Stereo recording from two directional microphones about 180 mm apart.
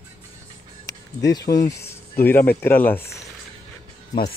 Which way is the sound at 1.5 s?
20° left (ahead or behind).